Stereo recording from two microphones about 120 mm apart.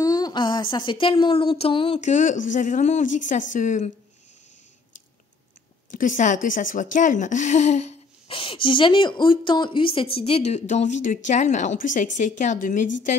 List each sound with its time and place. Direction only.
0.0 s speech: 30° left (ahead or behind); by 2.0 s 50° left (ahead or behind)
2.0 s speech: 85° left
5.9 s speech: 90° left; by 7.9 s 75° left (ahead or behind)
8.3 s a woman's voice: 45° left (ahead or behind); by 13.1 s 90° left